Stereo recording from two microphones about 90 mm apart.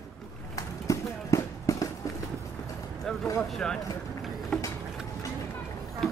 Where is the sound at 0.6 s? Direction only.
35° left (ahead or behind).